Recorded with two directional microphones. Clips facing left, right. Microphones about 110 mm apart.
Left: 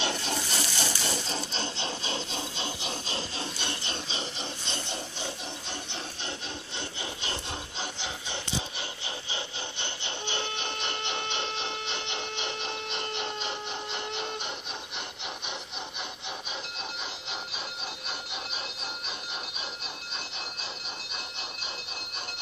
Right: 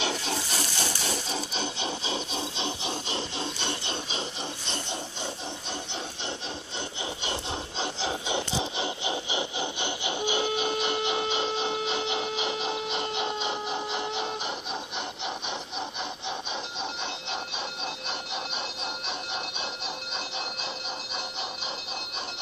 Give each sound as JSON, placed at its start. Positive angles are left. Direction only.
{"t": 0.0, "sound": "a sound", "side_deg": -5}
{"t": 7.8, "sound": "filing", "side_deg": -30}
{"t": 8.4, "sound": "wood", "side_deg": -25}